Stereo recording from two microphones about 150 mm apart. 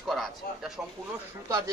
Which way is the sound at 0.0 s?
Centre (ahead or behind).